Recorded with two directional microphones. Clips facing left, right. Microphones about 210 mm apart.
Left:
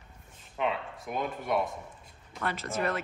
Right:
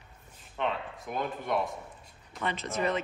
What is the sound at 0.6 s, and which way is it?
A man's voice, centre (ahead or behind).